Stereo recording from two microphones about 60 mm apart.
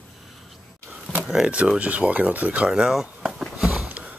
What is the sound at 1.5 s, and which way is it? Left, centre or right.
Speech, centre.